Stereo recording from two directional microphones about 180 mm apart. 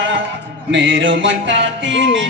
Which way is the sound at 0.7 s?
90° right.